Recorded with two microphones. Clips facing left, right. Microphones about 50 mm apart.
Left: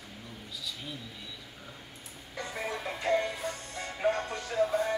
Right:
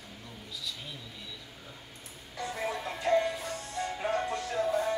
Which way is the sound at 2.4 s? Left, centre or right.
Centre.